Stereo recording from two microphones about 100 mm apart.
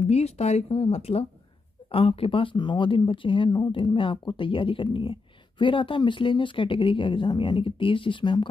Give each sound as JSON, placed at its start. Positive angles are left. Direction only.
{"t": 0.1, "sound": "speech", "side_deg": 90}
{"t": 1.9, "sound": "speech", "side_deg": 65}